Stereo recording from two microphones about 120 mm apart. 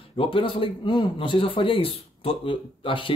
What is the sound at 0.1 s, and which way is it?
Speech, 45° left (ahead or behind).